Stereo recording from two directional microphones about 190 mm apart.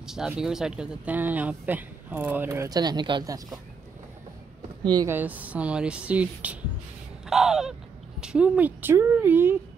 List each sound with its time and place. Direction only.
0.0 s speech: centre (ahead or behind); by 3.5 s 20° right (ahead or behind)
4.8 s speech: 20° right (ahead or behind)
5.1 s speech: 10° right (ahead or behind)
7.2 s crow: centre (ahead or behind)
8.2 s speech: 5° right (ahead or behind)